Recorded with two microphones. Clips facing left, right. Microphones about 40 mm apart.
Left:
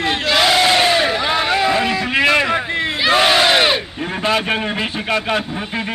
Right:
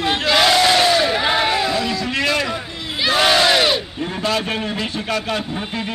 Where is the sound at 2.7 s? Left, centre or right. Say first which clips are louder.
Left 9 dB; left.